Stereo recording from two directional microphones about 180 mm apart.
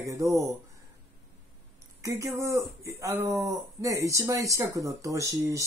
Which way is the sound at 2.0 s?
15° right (ahead or behind).